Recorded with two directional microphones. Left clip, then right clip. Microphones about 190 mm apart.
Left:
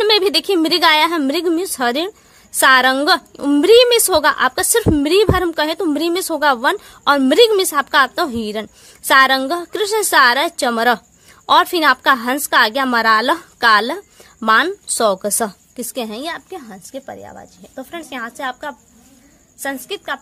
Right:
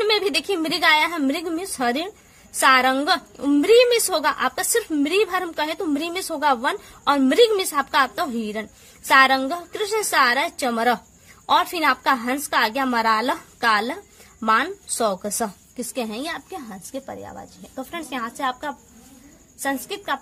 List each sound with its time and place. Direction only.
0.0 s a woman's voice: 50° left (ahead or behind); by 20.2 s 25° left (ahead or behind)